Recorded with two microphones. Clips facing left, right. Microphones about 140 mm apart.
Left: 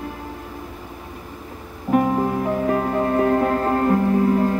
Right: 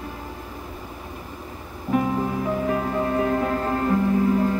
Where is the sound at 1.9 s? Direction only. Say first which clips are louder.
Left 4 dB; 45° left (ahead or behind).